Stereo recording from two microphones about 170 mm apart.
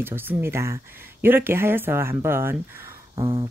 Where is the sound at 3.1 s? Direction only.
25° right (ahead or behind).